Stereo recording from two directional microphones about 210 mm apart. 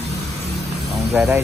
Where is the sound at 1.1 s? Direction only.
Centre (ahead or behind).